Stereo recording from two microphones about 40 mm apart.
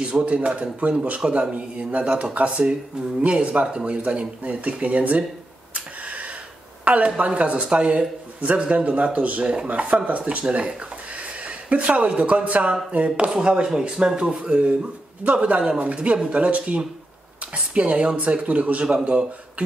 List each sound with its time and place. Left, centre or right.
0.0 s a man's voice: right
6.8 s a sound: right
7.2 s a man's voice: right